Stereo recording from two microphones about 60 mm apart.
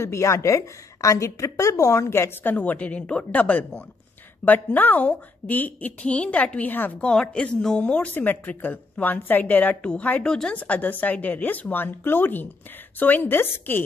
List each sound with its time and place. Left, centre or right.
0.0 s a woman's voice: left
2.4 s a woman's voice: left
3.3 s a woman's voice: left
7.0 s a woman's voice: centre; by 9.8 s left
9.8 s a woman's voice: centre
10.2 s a woman's voice: centre
10.5 s speech: left